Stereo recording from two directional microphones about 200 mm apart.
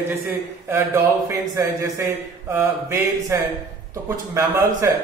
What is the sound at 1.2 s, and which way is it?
Speech, 15° right (ahead or behind).